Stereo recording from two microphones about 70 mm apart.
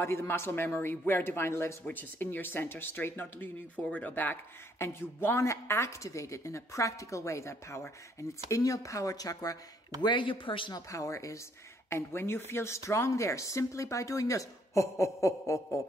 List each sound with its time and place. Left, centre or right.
0.0 s speech: left
1.9 s a woman's voice: left
10.7 s a woman's voice: left
11.9 s a woman's voice: left